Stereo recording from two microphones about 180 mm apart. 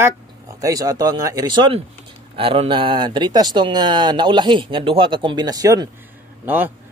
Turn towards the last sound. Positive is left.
turn(degrees=-10)  # may be behind; listen again after turning